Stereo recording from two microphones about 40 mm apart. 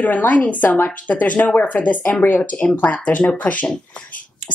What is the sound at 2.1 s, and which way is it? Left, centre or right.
Speech, left.